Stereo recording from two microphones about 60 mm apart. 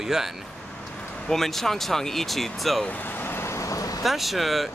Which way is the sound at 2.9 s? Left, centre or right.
Left.